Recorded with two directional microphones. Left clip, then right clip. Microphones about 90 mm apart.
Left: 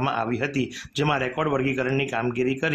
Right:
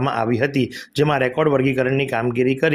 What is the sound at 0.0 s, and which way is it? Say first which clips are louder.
Speech: right 5 dB; 40° right (ahead or behind).